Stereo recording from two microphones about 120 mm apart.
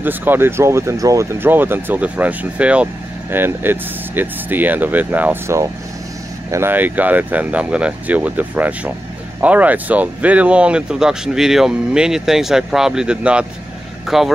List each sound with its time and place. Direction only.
0.0 s speech: 15° right (ahead or behind)